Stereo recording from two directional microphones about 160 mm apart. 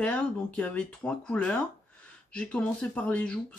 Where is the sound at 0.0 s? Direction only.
5° left (ahead or behind).